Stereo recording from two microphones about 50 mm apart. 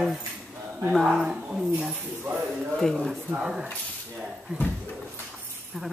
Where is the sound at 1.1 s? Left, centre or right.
Centre.